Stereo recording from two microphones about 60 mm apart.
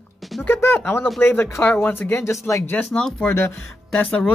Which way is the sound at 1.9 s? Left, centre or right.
Left.